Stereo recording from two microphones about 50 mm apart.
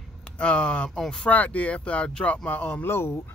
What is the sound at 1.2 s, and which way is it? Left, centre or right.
Speech, left.